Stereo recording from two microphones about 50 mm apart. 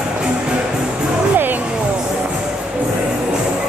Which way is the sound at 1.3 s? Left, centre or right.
Right.